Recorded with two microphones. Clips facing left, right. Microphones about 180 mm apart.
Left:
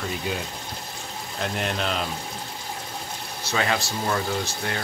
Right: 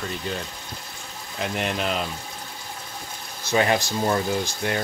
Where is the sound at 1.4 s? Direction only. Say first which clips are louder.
Right 1 dB; centre (ahead or behind).